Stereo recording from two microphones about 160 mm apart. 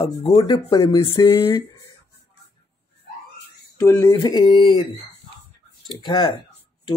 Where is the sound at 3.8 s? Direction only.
15° left (ahead or behind).